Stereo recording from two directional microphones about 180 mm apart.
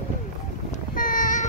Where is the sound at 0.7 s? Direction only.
50° left (ahead or behind).